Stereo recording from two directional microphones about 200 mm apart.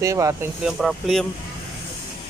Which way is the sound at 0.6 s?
Centre (ahead or behind).